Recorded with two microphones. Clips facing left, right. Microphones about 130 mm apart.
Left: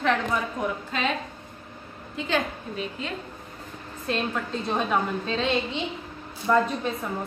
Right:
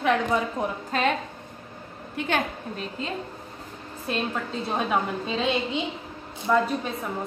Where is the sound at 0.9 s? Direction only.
45° right (ahead or behind).